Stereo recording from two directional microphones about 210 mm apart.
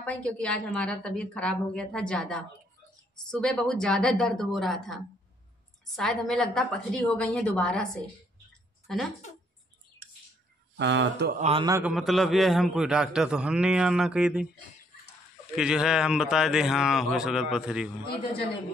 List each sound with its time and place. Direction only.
0.0 s a man's voice: 5° left (ahead or behind)
10.8 s speech: 55° right (ahead or behind)
11.3 s a man's voice: 30° right (ahead or behind)
11.6 s a man's voice: 15° right (ahead or behind)
11.9 s a man's voice: centre (ahead or behind)
15.5 s a man's voice: 5° right (ahead or behind)